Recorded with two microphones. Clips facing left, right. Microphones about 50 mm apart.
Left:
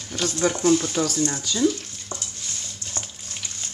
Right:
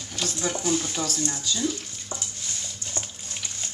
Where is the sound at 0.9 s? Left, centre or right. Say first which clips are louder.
Left 6 dB; left.